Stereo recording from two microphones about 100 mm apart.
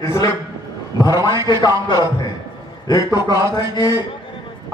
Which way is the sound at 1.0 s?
40° left (ahead or behind).